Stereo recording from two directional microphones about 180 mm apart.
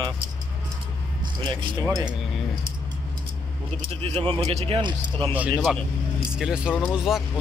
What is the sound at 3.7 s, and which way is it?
Speech, 30° right (ahead or behind).